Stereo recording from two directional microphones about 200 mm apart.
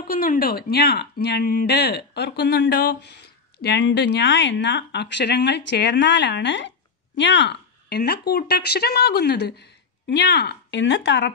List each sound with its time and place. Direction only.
0.0 s speech: 45° left (ahead or behind); by 11.3 s 60° left (ahead or behind)